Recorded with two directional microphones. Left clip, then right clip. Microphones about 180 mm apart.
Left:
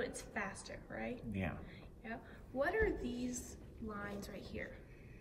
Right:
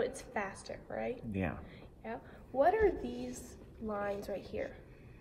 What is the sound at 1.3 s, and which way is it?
Speech, 25° right (ahead or behind).